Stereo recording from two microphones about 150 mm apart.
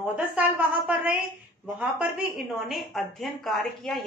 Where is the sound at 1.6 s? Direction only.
5° right (ahead or behind).